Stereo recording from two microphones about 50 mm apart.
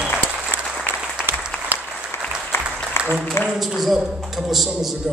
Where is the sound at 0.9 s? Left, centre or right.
Right.